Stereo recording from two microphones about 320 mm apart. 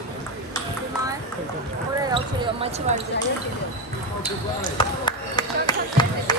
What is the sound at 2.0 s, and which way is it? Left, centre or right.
Basketball bounce, centre.